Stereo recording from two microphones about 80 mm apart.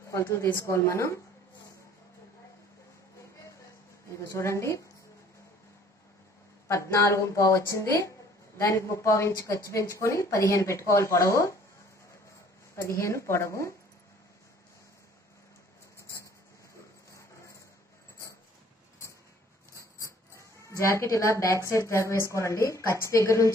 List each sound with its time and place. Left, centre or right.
0.1 s speech: left
4.3 s speech: left
6.7 s speech: left
12.8 s speech: left
19.7 s a sound: left
21.6 s speech: left